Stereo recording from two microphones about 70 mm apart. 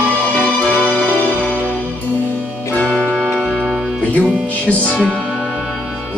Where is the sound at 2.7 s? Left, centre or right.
Centre.